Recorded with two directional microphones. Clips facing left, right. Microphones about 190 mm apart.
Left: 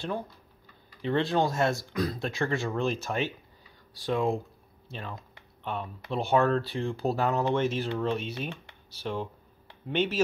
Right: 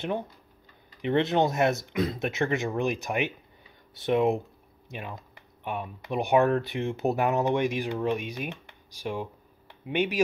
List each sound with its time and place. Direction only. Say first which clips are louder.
1.0 s speech: right 2 dB; 20° right (ahead or behind)